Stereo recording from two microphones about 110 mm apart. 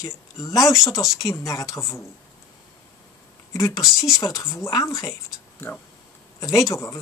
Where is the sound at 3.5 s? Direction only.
30° left (ahead or behind).